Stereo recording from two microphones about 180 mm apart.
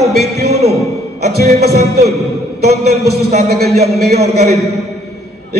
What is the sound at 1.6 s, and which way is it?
Music, 65° right (ahead or behind).